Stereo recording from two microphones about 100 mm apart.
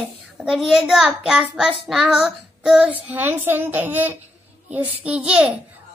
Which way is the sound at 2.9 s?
20° right (ahead or behind).